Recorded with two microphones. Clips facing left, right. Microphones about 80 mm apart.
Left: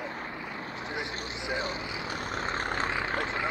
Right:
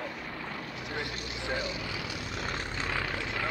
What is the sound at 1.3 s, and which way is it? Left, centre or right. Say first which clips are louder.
Vehicle: left 1 dB; left.